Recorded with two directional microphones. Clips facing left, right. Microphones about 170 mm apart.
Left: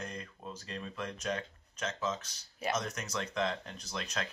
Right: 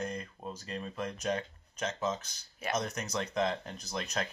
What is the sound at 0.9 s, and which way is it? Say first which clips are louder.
Speech: right 3 dB; 10° right (ahead or behind).